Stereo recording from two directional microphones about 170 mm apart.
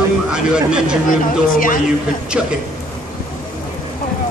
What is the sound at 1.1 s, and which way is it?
Speech, 55° left (ahead or behind).